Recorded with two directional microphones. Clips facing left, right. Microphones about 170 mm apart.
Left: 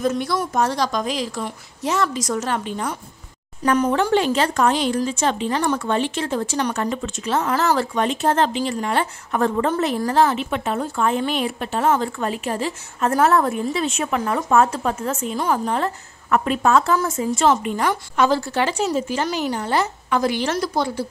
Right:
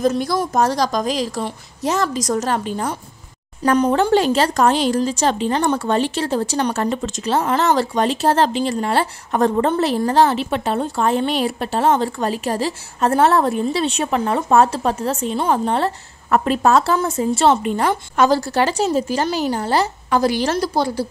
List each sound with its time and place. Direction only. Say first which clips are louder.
0.0 s speech: right 3 dB; 35° right (ahead or behind)